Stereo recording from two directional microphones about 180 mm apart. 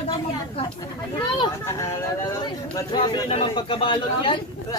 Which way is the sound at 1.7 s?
15° left (ahead or behind).